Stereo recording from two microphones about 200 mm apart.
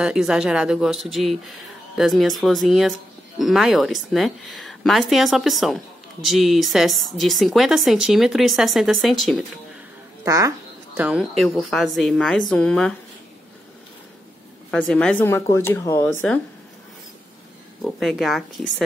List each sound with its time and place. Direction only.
0.0 s speech: 5° right (ahead or behind)
10.2 s speech: 15° right (ahead or behind)
11.0 s speech: 5° right (ahead or behind)
14.7 s speech: 5° left (ahead or behind)
17.8 s speech: centre (ahead or behind)